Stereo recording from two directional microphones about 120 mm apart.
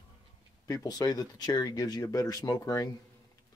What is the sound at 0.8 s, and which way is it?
Speech, 30° left (ahead or behind).